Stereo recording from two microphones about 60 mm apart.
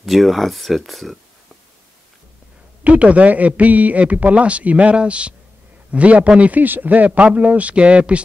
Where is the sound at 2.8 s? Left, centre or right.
Right.